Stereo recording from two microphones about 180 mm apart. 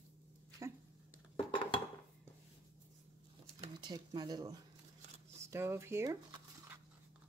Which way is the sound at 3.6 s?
25° right (ahead or behind).